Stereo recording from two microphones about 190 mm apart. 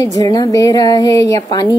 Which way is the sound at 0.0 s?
20° left (ahead or behind).